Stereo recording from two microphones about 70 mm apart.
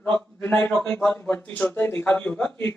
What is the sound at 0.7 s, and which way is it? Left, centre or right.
Speech, centre.